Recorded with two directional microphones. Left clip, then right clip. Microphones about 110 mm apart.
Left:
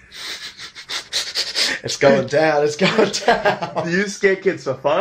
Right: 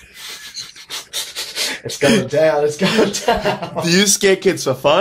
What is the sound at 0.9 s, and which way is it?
Pant, 35° left (ahead or behind).